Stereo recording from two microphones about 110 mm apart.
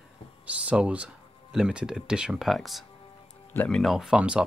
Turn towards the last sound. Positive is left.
turn(degrees=-10)  # may be behind; listen again after turning